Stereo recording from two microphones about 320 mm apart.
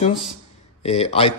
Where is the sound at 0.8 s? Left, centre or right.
Centre.